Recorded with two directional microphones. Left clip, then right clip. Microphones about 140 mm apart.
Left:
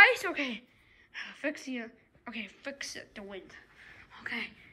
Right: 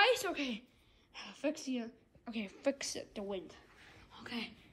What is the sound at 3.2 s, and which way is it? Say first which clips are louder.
Speech: right 3 dB; 20° left (ahead or behind).